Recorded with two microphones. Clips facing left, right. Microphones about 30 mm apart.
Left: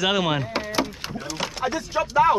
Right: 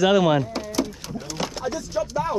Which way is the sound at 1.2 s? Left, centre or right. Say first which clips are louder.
Even; centre.